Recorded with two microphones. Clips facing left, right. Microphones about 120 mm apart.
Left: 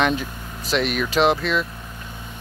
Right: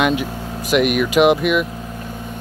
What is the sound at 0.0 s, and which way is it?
Speech, 10° right (ahead or behind).